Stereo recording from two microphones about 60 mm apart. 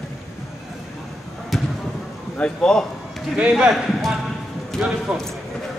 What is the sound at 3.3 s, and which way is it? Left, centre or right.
Speech, centre.